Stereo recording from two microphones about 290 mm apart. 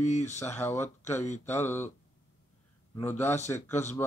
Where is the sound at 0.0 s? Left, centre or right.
Left.